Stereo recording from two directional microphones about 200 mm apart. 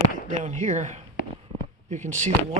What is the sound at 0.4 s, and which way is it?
Speech, 35° right (ahead or behind).